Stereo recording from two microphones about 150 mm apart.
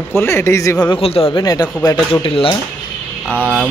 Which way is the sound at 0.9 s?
40° left (ahead or behind).